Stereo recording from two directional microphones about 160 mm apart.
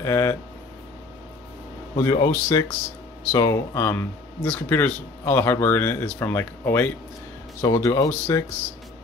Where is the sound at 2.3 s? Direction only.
15° left (ahead or behind).